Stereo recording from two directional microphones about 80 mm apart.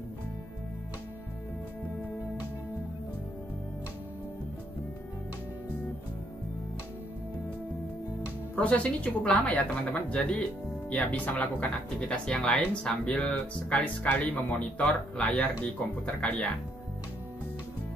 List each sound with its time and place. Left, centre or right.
8.5 s a woman's voice: centre